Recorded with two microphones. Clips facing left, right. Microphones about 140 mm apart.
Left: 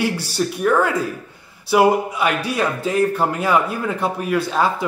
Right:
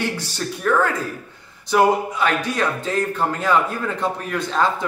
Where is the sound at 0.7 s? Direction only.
10° left (ahead or behind).